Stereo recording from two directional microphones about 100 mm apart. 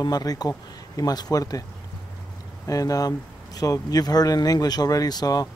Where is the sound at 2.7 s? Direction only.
35° left (ahead or behind).